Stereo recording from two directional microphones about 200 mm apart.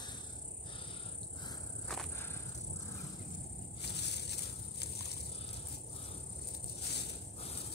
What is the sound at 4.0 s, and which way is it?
Insect, 55° left (ahead or behind).